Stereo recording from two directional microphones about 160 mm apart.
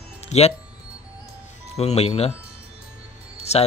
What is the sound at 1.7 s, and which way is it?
Speech, 40° left (ahead or behind).